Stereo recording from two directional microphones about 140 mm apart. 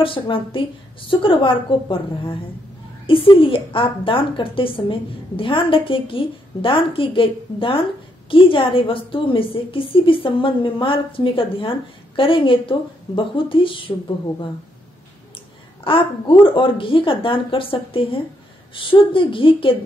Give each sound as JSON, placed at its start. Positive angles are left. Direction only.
{"t": 0.0, "sound": "a woman's voice", "side_deg": 40}
{"t": 15.8, "sound": "a woman's voice", "side_deg": 40}